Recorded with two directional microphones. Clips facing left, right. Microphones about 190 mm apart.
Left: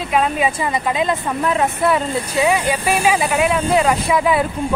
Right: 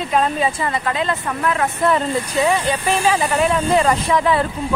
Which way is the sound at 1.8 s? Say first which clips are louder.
Even; 5° left (ahead or behind).